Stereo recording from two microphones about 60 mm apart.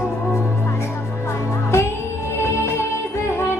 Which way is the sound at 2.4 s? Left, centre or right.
Left.